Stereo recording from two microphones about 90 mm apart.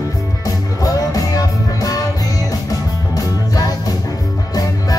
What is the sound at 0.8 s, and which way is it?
Music, 40° left (ahead or behind).